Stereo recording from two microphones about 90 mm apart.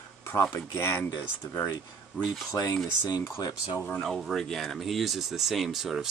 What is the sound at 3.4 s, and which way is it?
Speech, 50° left (ahead or behind).